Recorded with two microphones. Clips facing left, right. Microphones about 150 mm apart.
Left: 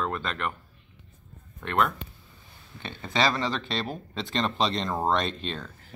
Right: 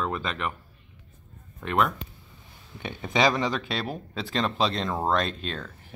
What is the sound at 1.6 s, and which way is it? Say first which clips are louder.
Speech: right 1 dB; 5° right (ahead or behind).